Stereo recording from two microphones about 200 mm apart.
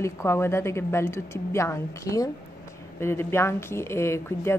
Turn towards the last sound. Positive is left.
turn(degrees=15)  # may be behind; listen again after turning